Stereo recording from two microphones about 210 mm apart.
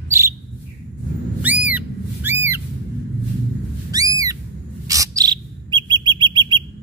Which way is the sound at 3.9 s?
15° right (ahead or behind).